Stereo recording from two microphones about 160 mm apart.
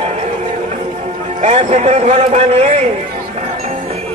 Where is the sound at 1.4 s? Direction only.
45° right (ahead or behind).